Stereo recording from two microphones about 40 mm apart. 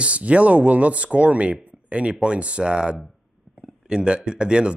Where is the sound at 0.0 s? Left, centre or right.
Right.